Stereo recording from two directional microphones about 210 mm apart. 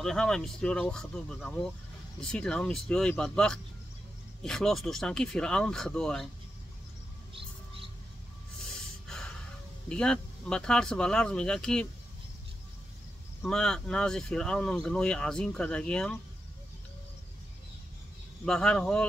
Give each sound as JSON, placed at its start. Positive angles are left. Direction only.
{"t": 0.0, "sound": "speech", "side_deg": 5}
{"t": 7.3, "sound": "mouse", "side_deg": -25}
{"t": 8.7, "sound": "snort", "side_deg": 5}
{"t": 9.8, "sound": "speech", "side_deg": 5}
{"t": 13.4, "sound": "speech", "side_deg": 5}
{"t": 18.4, "sound": "speech", "side_deg": 5}